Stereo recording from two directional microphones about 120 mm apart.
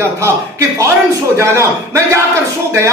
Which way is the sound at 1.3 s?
25° right (ahead or behind).